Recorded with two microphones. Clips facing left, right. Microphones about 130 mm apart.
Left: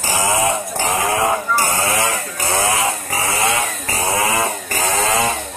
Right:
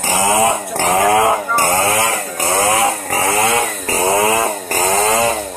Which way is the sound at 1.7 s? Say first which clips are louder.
Right 4 dB; 50° right (ahead or behind).